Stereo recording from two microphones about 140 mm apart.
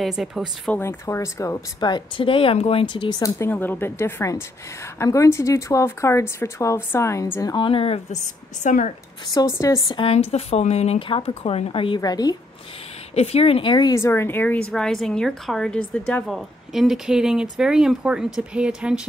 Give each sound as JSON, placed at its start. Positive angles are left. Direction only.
{"t": 0.0, "sound": "speech", "side_deg": 0}
{"t": 0.7, "sound": "speech", "side_deg": 20}
{"t": 7.5, "sound": "speech", "side_deg": 40}
{"t": 8.6, "sound": "a woman's voice", "side_deg": 60}
{"t": 9.3, "sound": "speech", "side_deg": 25}
{"t": 9.9, "sound": "speech", "side_deg": 45}
{"t": 13.1, "sound": "speech", "side_deg": 45}
{"t": 13.9, "sound": "speech", "side_deg": 20}
{"t": 16.3, "sound": "speech", "side_deg": 0}